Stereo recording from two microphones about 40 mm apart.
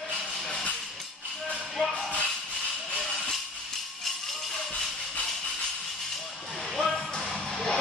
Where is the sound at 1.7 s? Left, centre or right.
Centre.